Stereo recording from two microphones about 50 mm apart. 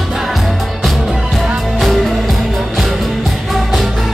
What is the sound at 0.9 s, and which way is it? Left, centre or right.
Music, centre.